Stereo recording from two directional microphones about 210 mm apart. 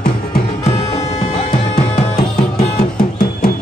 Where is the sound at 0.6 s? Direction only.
30° left (ahead or behind).